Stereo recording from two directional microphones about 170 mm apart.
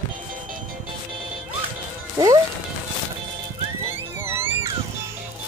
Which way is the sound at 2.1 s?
20° right (ahead or behind).